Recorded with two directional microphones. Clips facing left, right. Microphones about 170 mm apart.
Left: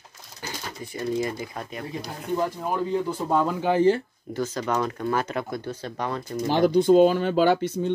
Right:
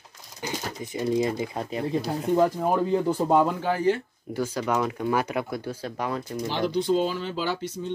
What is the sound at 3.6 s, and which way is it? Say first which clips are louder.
Speech: left 4 dB; 25° left (ahead or behind).